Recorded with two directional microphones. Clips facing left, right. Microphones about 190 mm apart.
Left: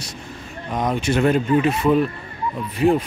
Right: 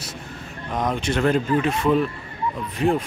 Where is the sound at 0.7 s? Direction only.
5° left (ahead or behind).